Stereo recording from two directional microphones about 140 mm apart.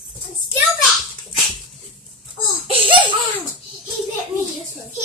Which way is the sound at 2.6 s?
40° right (ahead or behind).